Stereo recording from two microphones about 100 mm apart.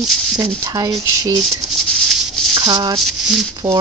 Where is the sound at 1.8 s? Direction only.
5° left (ahead or behind).